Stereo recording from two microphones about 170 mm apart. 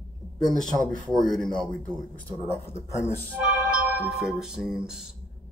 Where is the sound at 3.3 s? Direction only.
10° right (ahead or behind).